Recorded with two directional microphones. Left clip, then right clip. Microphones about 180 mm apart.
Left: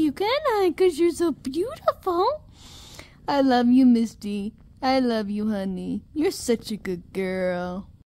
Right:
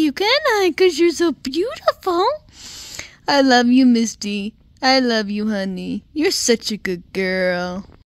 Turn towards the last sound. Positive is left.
turn(degrees=-15)  # may be behind; listen again after turning